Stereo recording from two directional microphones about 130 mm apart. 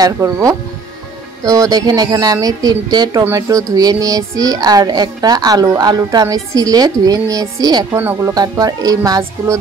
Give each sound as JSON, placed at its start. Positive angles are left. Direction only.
{"t": 0.0, "sound": "a woman's voice", "side_deg": -25}
{"t": 7.9, "sound": "speech", "side_deg": -15}
{"t": 8.4, "sound": "a woman's voice", "side_deg": -30}